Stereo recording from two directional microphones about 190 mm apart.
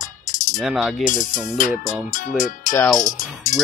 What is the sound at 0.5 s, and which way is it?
Speech, centre (ahead or behind).